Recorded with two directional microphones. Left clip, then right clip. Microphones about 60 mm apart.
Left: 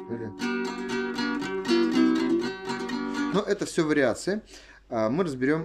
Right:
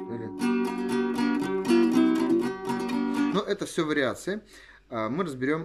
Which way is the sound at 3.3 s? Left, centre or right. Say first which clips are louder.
Left 2 dB; centre.